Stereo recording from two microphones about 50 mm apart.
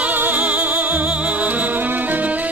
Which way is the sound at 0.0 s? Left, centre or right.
Right.